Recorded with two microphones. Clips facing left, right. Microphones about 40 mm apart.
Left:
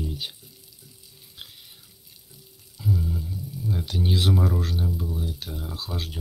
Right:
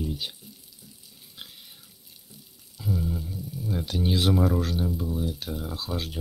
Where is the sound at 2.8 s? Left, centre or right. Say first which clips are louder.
Left 2 dB; centre.